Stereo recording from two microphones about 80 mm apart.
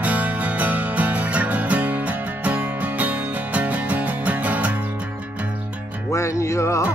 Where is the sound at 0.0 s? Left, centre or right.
Centre.